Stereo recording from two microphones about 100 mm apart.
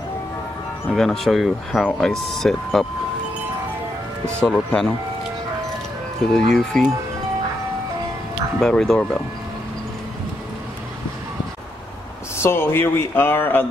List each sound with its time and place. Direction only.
0.9 s speech: 5° left (ahead or behind)
4.4 s speech: 5° left (ahead or behind)
6.5 s speech: 5° left (ahead or behind)
8.5 s speech: 5° left (ahead or behind)
12.4 s speech: 25° left (ahead or behind)